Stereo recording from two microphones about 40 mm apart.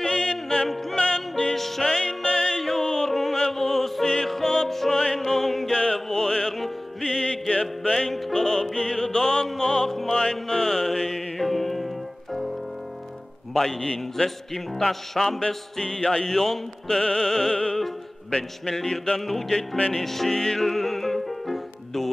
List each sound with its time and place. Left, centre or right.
0.0 s music: centre
1.5 s music: centre
2.6 s music: centre
5.7 s chant: left
5.9 s music: centre
7.9 s music: centre
9.8 s music: centre
10.1 s music: centre
13.5 s music: centre
15.4 s music: left
19.1 s music: centre